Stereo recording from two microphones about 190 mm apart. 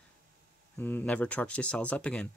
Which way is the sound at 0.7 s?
10° left (ahead or behind).